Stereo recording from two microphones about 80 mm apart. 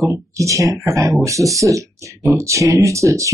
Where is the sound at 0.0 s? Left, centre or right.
Right.